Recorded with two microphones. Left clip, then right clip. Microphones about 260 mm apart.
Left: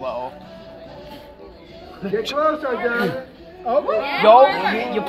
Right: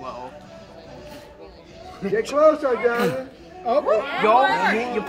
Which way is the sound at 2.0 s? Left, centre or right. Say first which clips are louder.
Right 3 dB; right.